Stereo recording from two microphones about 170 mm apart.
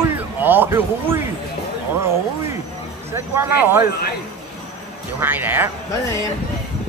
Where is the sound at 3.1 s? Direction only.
15° right (ahead or behind).